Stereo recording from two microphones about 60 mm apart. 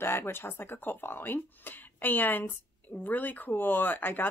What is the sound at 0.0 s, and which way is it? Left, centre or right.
Speech, left.